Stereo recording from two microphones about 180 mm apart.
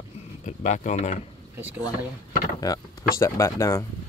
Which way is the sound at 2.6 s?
20° left (ahead or behind).